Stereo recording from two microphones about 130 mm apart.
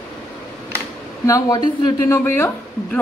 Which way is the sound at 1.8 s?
20° left (ahead or behind).